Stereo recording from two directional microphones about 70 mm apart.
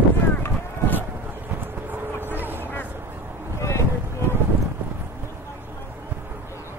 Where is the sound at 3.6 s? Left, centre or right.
Left.